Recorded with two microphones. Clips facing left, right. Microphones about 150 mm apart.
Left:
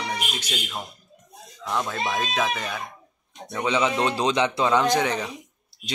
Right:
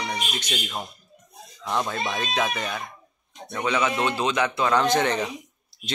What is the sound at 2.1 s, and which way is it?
Speech, 5° left (ahead or behind).